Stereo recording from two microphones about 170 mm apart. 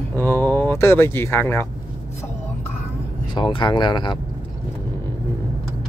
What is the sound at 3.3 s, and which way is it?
Speech, 30° left (ahead or behind).